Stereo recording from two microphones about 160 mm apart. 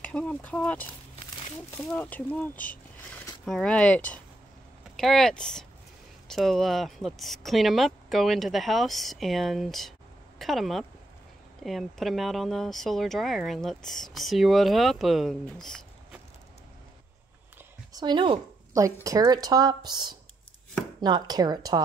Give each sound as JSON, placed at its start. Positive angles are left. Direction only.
{"t": 0.0, "sound": "speech", "side_deg": 10}
{"t": 17.9, "sound": "speech", "side_deg": -30}
{"t": 18.7, "sound": "speech", "side_deg": -20}